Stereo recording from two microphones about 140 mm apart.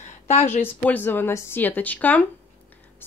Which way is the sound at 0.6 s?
15° left (ahead or behind).